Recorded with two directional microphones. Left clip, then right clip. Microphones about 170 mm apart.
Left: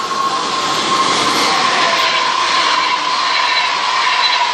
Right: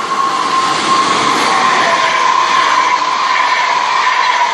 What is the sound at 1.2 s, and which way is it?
Train, 30° right (ahead or behind).